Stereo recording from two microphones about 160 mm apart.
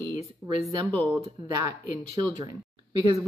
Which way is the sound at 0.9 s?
10° left (ahead or behind).